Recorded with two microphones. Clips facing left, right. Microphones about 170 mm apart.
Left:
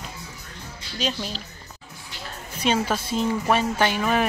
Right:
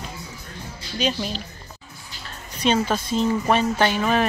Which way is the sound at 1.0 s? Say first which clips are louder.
Right 3 dB; 5° right (ahead or behind).